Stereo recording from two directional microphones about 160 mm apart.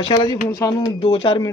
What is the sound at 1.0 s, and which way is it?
Speech, 35° left (ahead or behind).